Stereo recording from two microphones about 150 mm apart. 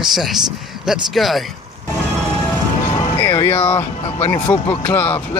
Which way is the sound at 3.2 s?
15° left (ahead or behind).